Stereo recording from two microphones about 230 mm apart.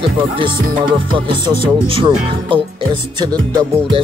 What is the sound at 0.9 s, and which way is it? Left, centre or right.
Speech, right.